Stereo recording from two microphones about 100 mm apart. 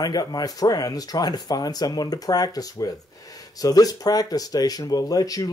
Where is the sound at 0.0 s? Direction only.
40° left (ahead or behind).